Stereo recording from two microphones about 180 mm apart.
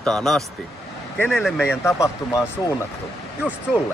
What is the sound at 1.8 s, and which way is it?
Speech, 15° left (ahead or behind).